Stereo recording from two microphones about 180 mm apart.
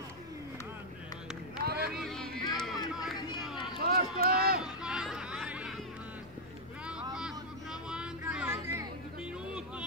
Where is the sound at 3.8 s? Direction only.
60° right (ahead or behind).